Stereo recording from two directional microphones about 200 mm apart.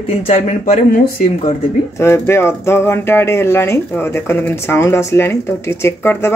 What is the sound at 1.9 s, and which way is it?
Speech, 15° left (ahead or behind).